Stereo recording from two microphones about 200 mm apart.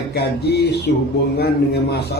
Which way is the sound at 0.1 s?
55° left (ahead or behind).